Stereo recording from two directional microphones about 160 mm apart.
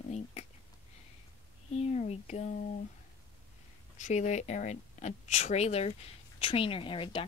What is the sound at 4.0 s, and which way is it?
Speech, 45° left (ahead or behind).